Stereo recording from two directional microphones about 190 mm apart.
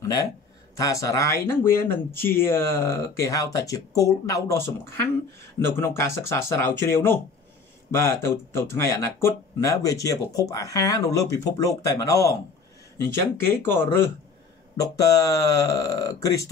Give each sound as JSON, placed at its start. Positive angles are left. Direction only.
{"t": 0.0, "sound": "speech", "side_deg": 20}